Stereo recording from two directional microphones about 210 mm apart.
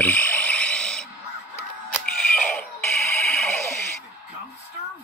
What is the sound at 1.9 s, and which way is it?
Chicken, 5° left (ahead or behind).